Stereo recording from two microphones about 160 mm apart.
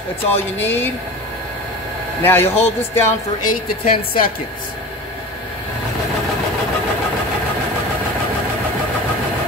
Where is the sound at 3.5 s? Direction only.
65° left (ahead or behind).